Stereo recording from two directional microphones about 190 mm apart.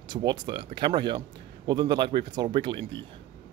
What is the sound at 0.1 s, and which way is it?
Speech, 20° right (ahead or behind).